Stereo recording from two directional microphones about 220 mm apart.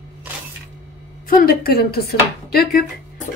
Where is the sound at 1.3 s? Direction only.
40° left (ahead or behind).